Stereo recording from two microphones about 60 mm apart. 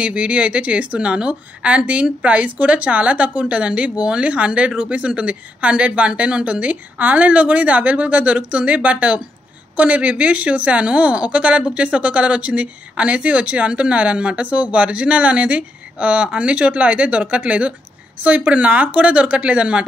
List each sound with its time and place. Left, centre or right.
0.0 s a woman's voice: right